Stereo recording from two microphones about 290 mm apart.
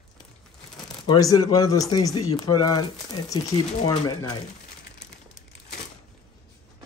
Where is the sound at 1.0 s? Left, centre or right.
Centre.